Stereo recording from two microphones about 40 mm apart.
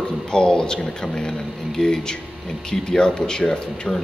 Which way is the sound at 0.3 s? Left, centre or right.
Left.